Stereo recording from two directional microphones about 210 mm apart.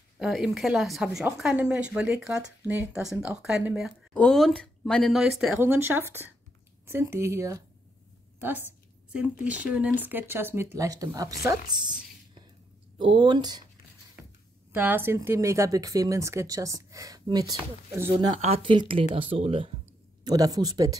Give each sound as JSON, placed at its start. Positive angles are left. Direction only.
{"t": 0.2, "sound": "a woman's voice", "side_deg": 0}
{"t": 14.7, "sound": "speech", "side_deg": -10}
{"t": 18.4, "sound": "speech", "side_deg": -25}